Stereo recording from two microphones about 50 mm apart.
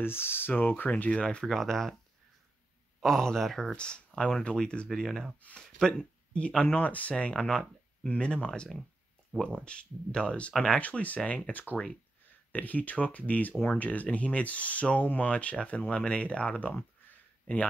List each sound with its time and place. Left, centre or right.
0.0 s speech: left
0.8 s speech: left
1.2 s speech: centre
1.5 s speech: centre
3.0 s speech: centre
3.7 s speech: centre
4.9 s speech: centre
6.3 s speech: left
9.5 s speech: left